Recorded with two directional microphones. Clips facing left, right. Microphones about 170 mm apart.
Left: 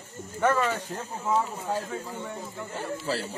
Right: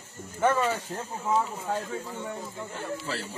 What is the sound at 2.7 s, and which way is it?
Speech, 35° left (ahead or behind).